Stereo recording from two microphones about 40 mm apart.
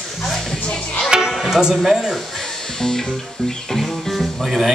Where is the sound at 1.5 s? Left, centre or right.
Centre.